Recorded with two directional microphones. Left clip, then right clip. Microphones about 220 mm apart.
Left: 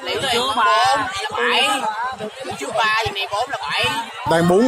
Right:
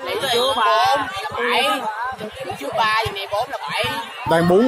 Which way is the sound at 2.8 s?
20° left (ahead or behind).